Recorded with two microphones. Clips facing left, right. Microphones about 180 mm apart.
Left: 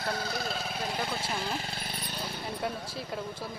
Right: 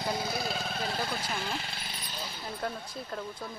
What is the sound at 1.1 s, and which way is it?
Speech, 20° left (ahead or behind).